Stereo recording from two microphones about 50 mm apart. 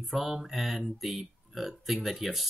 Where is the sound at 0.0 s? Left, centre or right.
Centre.